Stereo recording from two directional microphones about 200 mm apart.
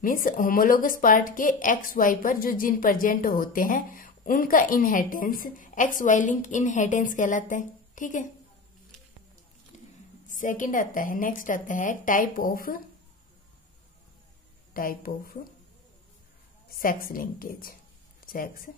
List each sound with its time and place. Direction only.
0.0 s a woman's voice: 40° left (ahead or behind)
10.2 s a woman's voice: 40° left (ahead or behind)
14.7 s a woman's voice: 45° left (ahead or behind)
16.7 s a woman's voice: 45° left (ahead or behind)